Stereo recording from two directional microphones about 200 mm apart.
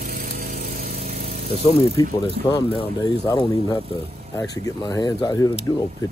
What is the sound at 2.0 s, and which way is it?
Speech, 20° left (ahead or behind).